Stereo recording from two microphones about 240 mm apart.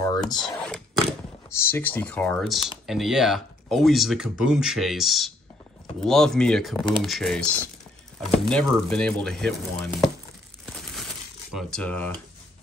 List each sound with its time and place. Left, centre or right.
0.3 s speech: centre
0.6 s a sound: centre
1.7 s speech: centre
10.6 s crumpling: centre
11.5 s speech: centre